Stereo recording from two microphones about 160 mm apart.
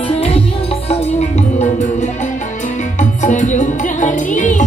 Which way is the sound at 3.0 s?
50° left (ahead or behind).